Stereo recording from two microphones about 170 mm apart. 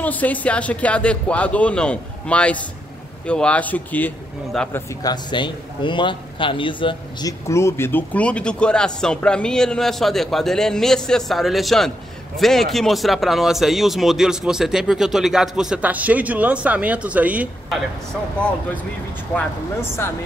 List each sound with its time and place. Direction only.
0.0 s speech: 10° left (ahead or behind)
4.7 s a man's voice: 25° left (ahead or behind); by 17.8 s 5° right (ahead or behind)